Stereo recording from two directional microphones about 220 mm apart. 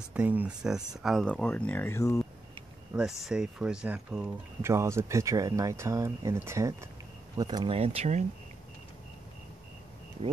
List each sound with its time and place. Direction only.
0.1 s speech: 5° right (ahead or behind); by 2.2 s 15° left (ahead or behind)
2.9 s speech: 5° right (ahead or behind); by 8.3 s 30° right (ahead or behind)